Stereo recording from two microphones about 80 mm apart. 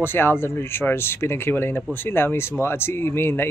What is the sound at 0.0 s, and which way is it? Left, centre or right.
Speech, left.